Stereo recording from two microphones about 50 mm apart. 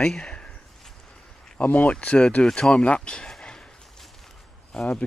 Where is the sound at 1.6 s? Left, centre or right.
Left; by 3.6 s centre.